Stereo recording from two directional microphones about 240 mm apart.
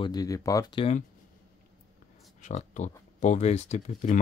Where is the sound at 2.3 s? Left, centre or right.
Left.